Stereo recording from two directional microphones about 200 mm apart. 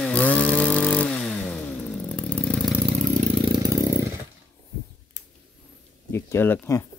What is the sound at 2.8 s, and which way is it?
Vehicle, 30° right (ahead or behind).